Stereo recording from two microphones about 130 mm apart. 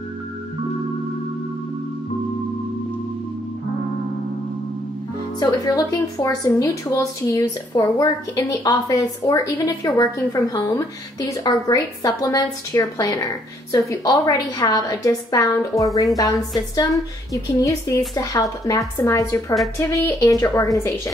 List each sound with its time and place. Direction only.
5.4 s speech: 30° left (ahead or behind)